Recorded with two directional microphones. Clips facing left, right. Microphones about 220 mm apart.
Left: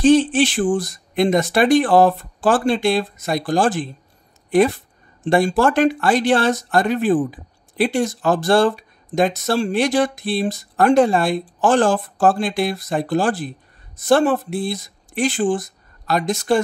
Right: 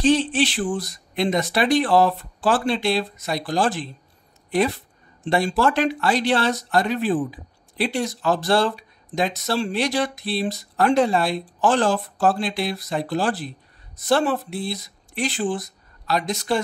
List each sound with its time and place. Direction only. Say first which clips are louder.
0.0 s speech: left 5 dB; 50° left (ahead or behind)
5.2 s speech: left 4 dB; 50° left (ahead or behind)